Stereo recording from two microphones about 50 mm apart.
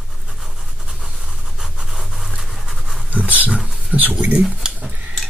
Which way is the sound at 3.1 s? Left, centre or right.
Right.